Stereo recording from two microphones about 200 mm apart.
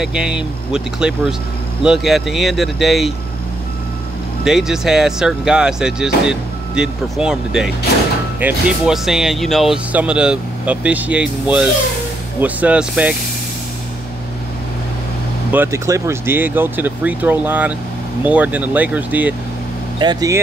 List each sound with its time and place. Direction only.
0.0 s speech: 5° right (ahead or behind)
4.5 s speech: centre (ahead or behind)
15.5 s speech: 10° right (ahead or behind)
20.0 s speech: 20° right (ahead or behind)